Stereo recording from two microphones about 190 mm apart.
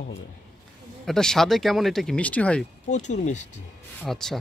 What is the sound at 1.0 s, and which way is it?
Speech, centre (ahead or behind).